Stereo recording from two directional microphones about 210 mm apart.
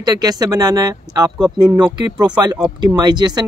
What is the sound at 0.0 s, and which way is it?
Speech, 20° right (ahead or behind).